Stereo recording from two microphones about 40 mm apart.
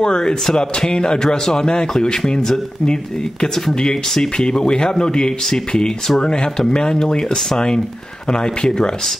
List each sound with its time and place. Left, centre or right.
0.0 s speech: centre